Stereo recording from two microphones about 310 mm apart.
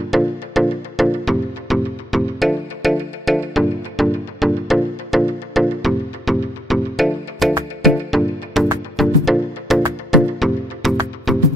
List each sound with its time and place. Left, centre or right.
0.1 s music: centre